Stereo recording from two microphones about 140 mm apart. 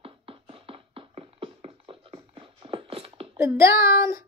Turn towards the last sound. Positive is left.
turn(degrees=-20)  # may be behind; listen again after turning